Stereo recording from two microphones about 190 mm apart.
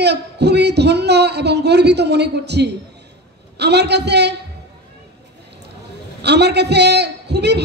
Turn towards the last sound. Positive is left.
turn(degrees=-60)  # may be behind; listen again after turning